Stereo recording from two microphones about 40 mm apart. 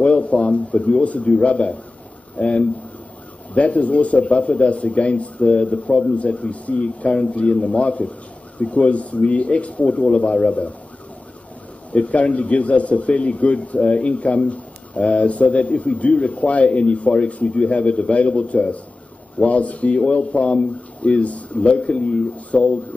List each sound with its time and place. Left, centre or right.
0.0 s speech: left
11.9 s speech: left